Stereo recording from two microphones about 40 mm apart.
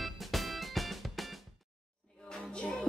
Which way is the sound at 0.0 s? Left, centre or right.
Centre.